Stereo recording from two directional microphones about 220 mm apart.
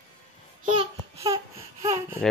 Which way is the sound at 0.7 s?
25° right (ahead or behind).